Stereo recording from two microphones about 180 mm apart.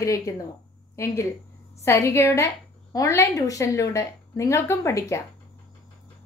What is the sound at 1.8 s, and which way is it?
A woman's voice, 15° left (ahead or behind).